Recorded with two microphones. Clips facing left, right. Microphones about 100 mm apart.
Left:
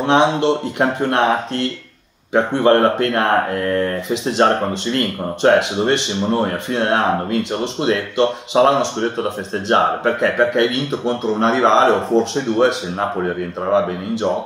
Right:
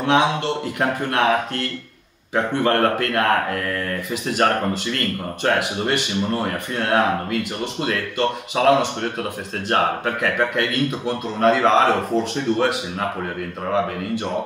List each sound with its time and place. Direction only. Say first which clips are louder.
0.0 s speech: left 4 dB; 25° left (ahead or behind)